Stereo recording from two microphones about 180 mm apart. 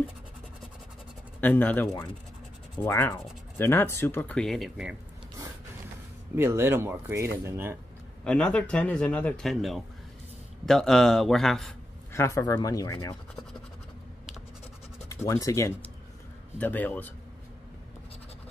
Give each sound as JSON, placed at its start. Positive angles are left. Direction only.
{"t": 1.4, "sound": "speech", "side_deg": 10}
{"t": 6.3, "sound": "speech", "side_deg": -15}
{"t": 8.2, "sound": "speech", "side_deg": 5}
{"t": 12.1, "sound": "speech", "side_deg": 15}
{"t": 15.0, "sound": "speech", "side_deg": 15}